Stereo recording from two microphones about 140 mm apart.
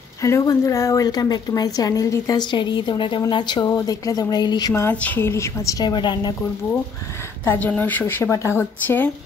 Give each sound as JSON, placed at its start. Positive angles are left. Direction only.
{"t": 0.2, "sound": "a woman's voice", "side_deg": 20}
{"t": 4.8, "sound": "a woman's voice", "side_deg": 15}
{"t": 7.4, "sound": "a woman's voice", "side_deg": 10}